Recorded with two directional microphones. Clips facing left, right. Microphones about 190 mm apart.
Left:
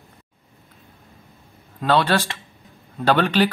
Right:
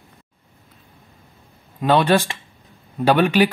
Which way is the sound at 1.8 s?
15° right (ahead or behind).